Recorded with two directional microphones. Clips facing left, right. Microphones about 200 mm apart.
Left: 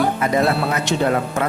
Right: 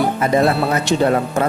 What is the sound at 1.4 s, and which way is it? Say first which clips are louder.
Speech: right 3 dB; 35° right (ahead or behind).